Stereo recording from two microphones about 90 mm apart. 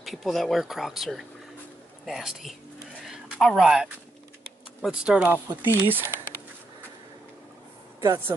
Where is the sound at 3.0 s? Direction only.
5° right (ahead or behind).